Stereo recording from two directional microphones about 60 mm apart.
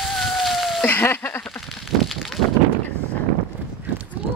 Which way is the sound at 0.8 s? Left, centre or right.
Left.